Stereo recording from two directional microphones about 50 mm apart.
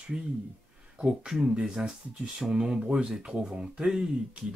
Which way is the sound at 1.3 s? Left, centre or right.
Centre.